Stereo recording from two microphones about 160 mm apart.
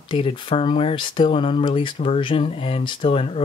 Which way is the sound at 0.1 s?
35° left (ahead or behind).